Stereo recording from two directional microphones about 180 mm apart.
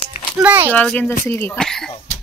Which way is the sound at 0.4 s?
10° right (ahead or behind).